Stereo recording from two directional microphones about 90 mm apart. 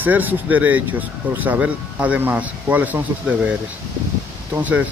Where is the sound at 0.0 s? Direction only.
20° right (ahead or behind).